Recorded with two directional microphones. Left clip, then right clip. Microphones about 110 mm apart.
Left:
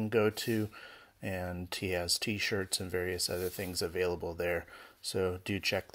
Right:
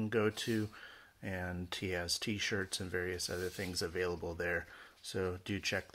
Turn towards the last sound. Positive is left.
turn(degrees=45)  # may be behind; listen again after turning